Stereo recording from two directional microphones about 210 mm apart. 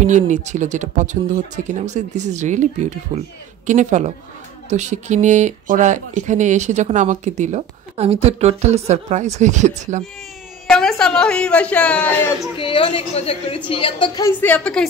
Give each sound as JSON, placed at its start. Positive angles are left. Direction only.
{"t": 0.0, "sound": "speech", "side_deg": -35}
{"t": 10.7, "sound": "a man's voice", "side_deg": 5}
{"t": 12.5, "sound": "a woman's voice", "side_deg": 25}
{"t": 14.4, "sound": "a man's voice", "side_deg": 5}